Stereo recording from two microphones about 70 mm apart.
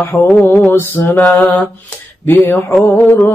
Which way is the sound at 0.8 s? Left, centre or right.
Left.